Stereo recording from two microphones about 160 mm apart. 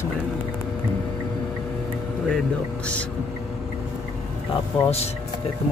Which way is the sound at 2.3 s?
5° left (ahead or behind).